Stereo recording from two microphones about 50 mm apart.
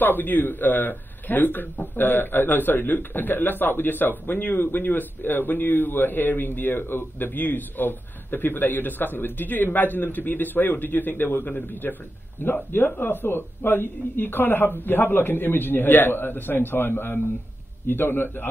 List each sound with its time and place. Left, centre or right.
0.0 s a man's voice: left